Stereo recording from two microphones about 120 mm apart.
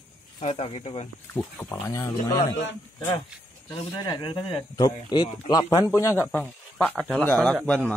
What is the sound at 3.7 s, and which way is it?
Speech, 35° left (ahead or behind).